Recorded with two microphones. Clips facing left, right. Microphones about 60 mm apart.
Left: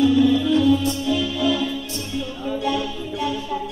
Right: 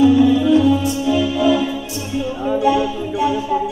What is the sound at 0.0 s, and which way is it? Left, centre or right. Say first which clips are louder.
Music: right 4 dB; centre.